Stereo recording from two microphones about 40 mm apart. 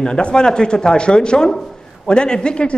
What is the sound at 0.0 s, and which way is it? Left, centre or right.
A man's voice, left.